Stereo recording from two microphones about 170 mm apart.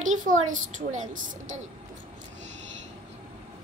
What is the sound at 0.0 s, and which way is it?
A woman's voice, 50° right (ahead or behind).